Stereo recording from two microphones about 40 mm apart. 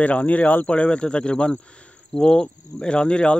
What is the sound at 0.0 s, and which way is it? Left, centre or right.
Speech, left.